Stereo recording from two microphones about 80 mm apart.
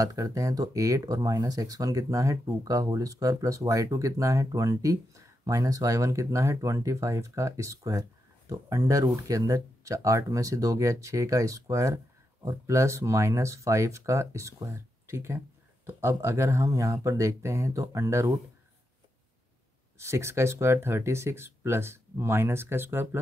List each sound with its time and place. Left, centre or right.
0.0 s speech: right
20.0 s speech: right